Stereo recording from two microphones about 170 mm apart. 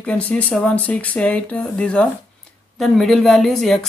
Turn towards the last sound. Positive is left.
turn(degrees=0)  # may be behind; listen again after turning